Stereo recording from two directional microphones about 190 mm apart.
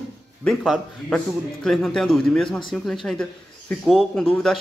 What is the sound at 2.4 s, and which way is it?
Speech, 25° left (ahead or behind).